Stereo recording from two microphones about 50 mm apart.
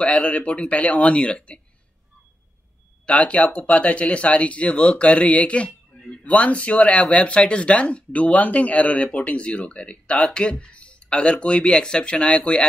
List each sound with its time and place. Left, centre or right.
0.0 s speech: centre
3.1 s speech: left